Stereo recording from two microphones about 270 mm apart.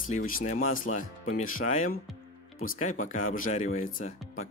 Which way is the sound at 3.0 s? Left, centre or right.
Left.